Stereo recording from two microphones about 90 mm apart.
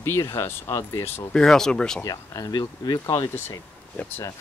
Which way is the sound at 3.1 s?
25° left (ahead or behind).